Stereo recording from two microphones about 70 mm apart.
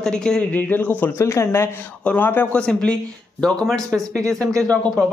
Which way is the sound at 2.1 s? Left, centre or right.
Left.